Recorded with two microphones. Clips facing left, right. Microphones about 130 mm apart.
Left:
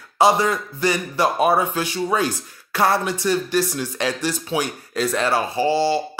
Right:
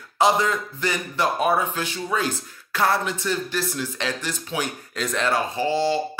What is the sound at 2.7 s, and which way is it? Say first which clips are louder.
Speech: left 3 dB; 15° left (ahead or behind).